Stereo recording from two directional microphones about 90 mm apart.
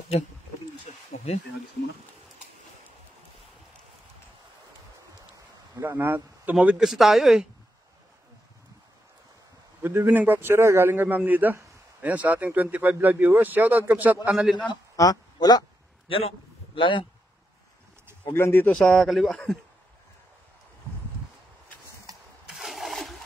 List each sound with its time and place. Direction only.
5.8 s speech: 25° right (ahead or behind)
6.5 s speech: 10° right (ahead or behind)
9.8 s a man's voice: 20° right (ahead or behind)
15.3 s speech: 50° left (ahead or behind)
16.1 s a man's voice: 85° left; by 17.0 s 65° left (ahead or behind)
18.3 s speech: 25° left (ahead or behind)
18.7 s speech: 5° left (ahead or behind)
22.5 s a sound: centre (ahead or behind)